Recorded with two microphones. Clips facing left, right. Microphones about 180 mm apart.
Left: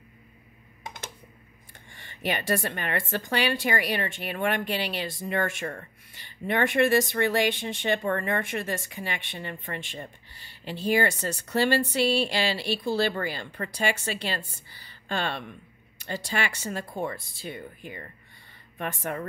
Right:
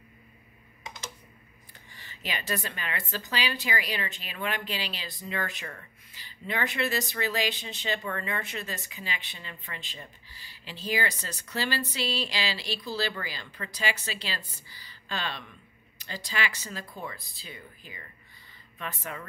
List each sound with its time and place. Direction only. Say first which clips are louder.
0.8 s typing: left 2 dB; 55° left (ahead or behind)
2.2 s speech: left 7 dB; 55° left (ahead or behind)